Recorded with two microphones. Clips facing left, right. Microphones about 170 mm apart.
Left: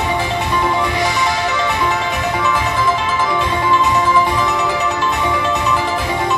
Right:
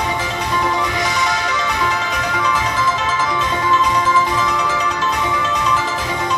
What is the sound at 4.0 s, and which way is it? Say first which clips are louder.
Music: left 2 dB; 25° left (ahead or behind).